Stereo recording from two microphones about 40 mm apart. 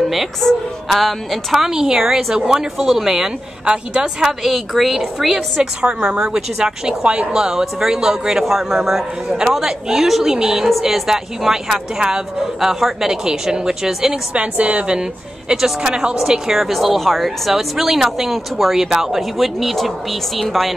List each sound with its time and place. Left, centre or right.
0.0 s a woman's voice: centre
1.7 s speech: centre
4.2 s a woman's voice: centre
10.3 s speech: centre
14.3 s a woman's voice: right
15.0 s a woman's voice: centre